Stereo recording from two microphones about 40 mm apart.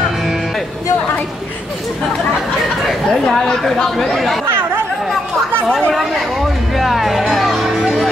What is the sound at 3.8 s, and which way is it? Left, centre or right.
Speech, centre.